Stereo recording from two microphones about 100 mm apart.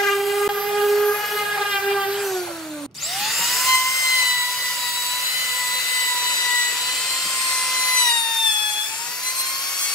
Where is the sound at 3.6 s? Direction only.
Centre (ahead or behind).